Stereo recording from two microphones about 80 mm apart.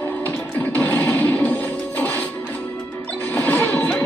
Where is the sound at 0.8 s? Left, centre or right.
Centre.